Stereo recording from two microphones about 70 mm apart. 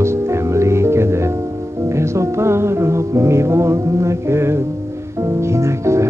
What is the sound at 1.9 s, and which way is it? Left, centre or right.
Music, right.